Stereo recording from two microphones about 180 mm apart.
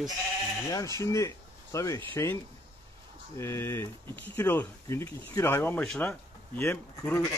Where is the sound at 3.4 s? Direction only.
15° left (ahead or behind).